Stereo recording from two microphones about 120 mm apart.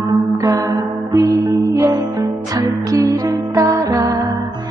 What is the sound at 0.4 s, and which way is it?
Music, 30° right (ahead or behind).